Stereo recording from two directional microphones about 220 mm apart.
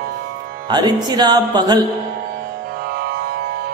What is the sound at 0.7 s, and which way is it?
Speech, 20° right (ahead or behind).